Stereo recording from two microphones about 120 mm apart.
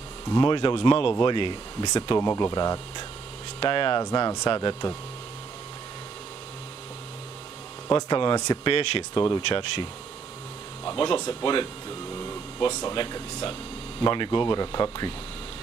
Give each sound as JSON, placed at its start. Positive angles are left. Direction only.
{"t": 0.3, "sound": "speech", "side_deg": 40}
{"t": 3.5, "sound": "speech", "side_deg": 45}
{"t": 4.0, "sound": "speech", "side_deg": 35}
{"t": 7.9, "sound": "speech", "side_deg": 40}
{"t": 8.6, "sound": "speech", "side_deg": 45}
{"t": 10.9, "sound": "speech", "side_deg": 35}